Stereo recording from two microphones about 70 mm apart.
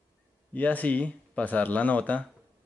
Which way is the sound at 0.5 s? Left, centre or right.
Left.